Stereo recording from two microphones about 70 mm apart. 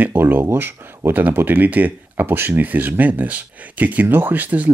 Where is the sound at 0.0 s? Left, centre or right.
Right.